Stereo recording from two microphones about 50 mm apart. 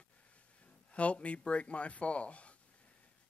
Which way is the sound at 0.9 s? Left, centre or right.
Left.